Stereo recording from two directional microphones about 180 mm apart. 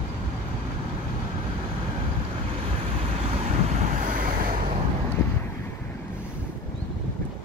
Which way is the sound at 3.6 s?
45° right (ahead or behind).